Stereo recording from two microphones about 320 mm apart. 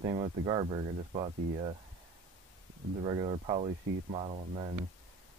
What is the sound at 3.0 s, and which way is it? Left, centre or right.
Speech, centre.